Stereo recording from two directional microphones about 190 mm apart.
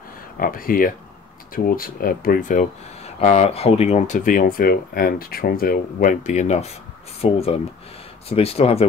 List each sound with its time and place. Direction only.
0.4 s speech: 50° left (ahead or behind); by 8.8 s 30° left (ahead or behind)